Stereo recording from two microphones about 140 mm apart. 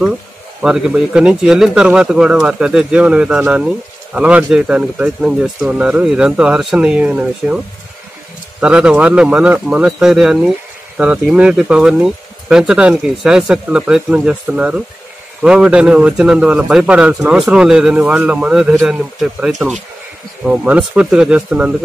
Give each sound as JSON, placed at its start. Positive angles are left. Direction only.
{"t": 0.6, "sound": "speech", "side_deg": -5}